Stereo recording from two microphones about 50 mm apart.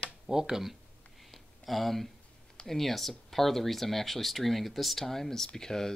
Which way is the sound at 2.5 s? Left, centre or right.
Centre.